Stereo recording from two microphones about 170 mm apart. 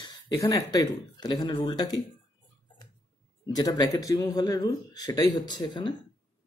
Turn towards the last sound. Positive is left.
turn(degrees=25)  # may be behind; listen again after turning